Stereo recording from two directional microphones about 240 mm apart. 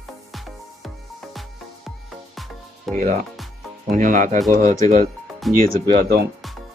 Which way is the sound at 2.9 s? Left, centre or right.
Right.